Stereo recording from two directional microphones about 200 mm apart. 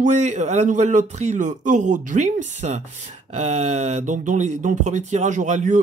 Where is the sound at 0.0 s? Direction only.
35° right (ahead or behind).